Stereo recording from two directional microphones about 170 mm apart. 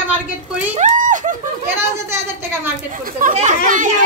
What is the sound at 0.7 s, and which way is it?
Speech, 50° right (ahead or behind).